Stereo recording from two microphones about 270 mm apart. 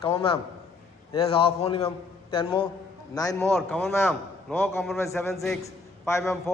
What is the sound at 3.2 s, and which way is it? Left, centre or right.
A man's voice, centre.